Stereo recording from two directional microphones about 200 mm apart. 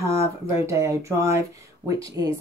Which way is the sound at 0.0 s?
15° right (ahead or behind).